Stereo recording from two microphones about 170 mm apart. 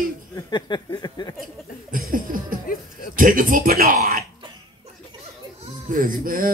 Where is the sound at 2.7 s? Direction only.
55° left (ahead or behind).